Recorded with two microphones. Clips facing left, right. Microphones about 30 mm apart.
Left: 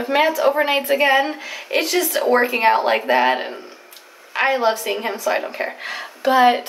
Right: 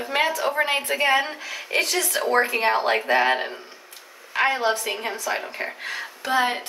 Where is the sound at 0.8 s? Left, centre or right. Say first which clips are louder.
Left 5 dB; centre.